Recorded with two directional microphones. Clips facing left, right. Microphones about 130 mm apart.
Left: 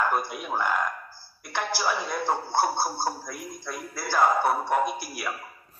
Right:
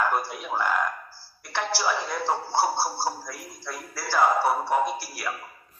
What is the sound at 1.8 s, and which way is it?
Speech, centre (ahead or behind).